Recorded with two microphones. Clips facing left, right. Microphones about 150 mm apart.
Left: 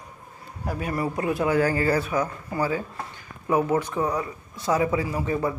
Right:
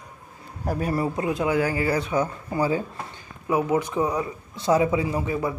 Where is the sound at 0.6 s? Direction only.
40° right (ahead or behind).